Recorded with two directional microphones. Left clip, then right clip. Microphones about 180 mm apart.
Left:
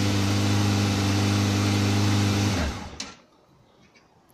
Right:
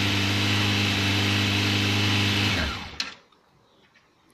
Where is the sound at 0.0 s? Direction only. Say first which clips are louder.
Right 2 dB; 10° left (ahead or behind).